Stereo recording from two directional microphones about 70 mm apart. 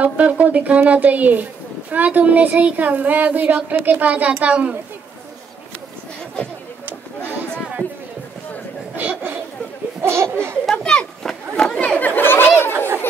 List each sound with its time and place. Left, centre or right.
0.0 s a woman's voice: right
8.9 s chatter: right
10.0 s laughter: right
10.6 s chatter: centre
12.2 s chatter: left
12.7 s a sound: right